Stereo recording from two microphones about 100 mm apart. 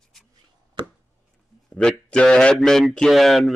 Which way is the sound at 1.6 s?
10° left (ahead or behind).